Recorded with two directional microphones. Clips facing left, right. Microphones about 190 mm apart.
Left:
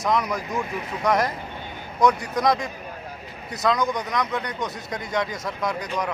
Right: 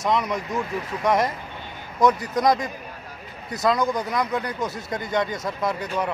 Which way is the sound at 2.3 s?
Centre (ahead or behind).